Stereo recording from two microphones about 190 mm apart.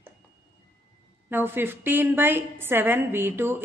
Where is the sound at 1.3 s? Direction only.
10° right (ahead or behind).